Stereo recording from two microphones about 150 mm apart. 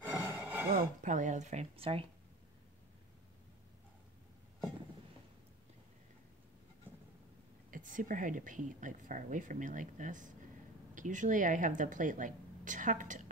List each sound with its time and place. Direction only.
0.1 s a sound: 10° right (ahead or behind)
0.7 s speech: 60° right (ahead or behind); by 2.0 s 40° right (ahead or behind)
7.7 s a woman's voice: 65° right (ahead or behind)